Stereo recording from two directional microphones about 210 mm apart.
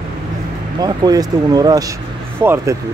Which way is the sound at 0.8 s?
20° right (ahead or behind).